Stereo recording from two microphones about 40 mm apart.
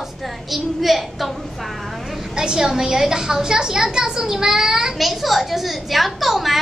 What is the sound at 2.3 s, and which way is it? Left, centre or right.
A woman's voice, centre.